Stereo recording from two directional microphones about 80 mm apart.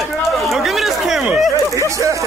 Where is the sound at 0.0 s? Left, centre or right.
Centre.